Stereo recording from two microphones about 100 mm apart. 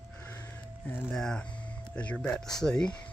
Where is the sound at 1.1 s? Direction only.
5° left (ahead or behind).